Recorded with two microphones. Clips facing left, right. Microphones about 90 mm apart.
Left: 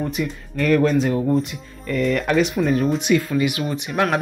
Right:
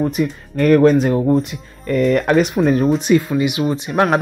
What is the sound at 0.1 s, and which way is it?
Speech, 45° right (ahead or behind).